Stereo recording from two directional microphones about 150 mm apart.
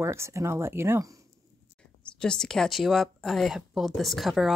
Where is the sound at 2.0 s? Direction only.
5° left (ahead or behind).